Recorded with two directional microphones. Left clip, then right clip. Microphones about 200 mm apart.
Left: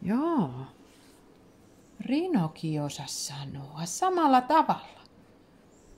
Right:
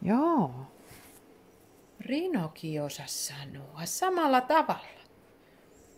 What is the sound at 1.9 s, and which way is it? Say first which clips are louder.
Speech: left 3 dB; 5° left (ahead or behind).